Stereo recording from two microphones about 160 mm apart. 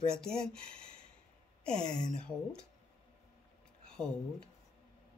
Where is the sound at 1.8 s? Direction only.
25° left (ahead or behind).